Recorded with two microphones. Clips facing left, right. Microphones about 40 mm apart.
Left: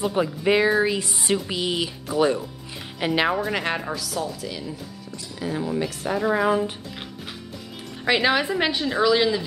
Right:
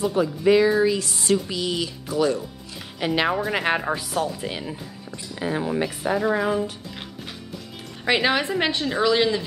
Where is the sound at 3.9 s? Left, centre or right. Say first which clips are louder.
Right 3 dB; right.